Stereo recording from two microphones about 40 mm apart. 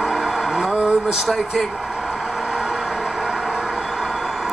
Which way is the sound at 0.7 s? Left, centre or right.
Right.